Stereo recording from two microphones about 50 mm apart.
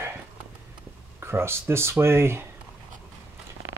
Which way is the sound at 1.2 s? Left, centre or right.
Right.